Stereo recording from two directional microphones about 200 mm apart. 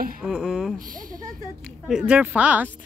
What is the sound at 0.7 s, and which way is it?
Speech, 40° right (ahead or behind).